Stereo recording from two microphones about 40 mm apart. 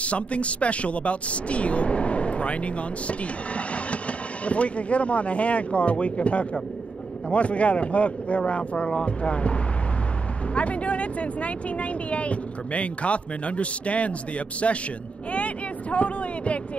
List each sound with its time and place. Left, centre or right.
0.0 s speech: left
15.3 s vehicle: left